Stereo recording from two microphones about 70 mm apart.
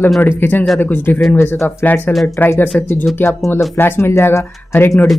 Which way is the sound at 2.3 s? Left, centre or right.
Left.